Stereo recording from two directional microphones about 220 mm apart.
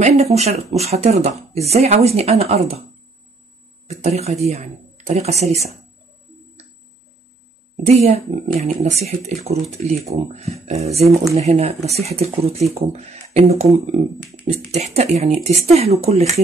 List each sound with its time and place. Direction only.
0.0 s speech: 30° right (ahead or behind)
3.8 s speech: 30° right (ahead or behind)
7.8 s speech: 30° right (ahead or behind)